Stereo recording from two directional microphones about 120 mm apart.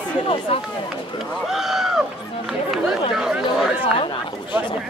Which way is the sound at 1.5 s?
Centre (ahead or behind).